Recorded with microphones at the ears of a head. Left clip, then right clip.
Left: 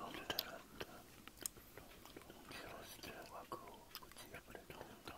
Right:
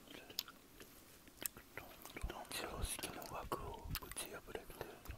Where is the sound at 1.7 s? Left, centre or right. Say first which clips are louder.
Right 5 dB; right.